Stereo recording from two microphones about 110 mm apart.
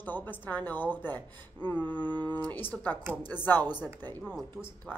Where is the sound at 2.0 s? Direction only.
45° right (ahead or behind).